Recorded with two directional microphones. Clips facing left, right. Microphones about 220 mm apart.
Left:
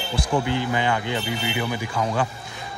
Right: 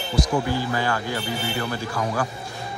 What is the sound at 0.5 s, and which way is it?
Speech, 20° left (ahead or behind).